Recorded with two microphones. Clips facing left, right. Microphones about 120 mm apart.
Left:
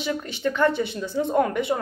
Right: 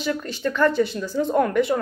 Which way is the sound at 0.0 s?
20° left (ahead or behind).